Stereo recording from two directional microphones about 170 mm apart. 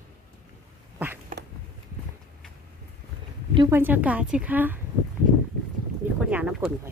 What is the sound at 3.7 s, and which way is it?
Speech, 10° right (ahead or behind).